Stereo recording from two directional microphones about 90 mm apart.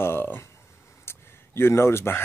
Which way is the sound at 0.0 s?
25° left (ahead or behind).